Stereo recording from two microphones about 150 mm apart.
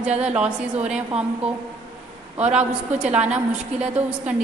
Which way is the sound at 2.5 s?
10° right (ahead or behind).